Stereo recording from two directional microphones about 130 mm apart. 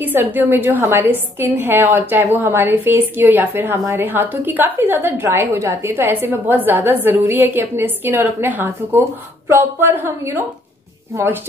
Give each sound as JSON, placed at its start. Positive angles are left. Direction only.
{"t": 0.0, "sound": "a woman's voice", "side_deg": -15}